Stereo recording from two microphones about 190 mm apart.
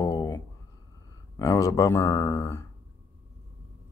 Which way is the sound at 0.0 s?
15° left (ahead or behind).